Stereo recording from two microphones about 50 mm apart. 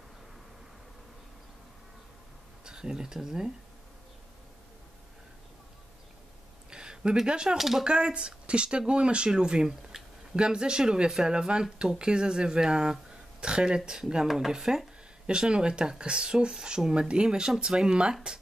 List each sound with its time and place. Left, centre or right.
2.6 s speech: centre
6.7 s a sound: centre
7.5 s speech: centre
7.8 s speech: centre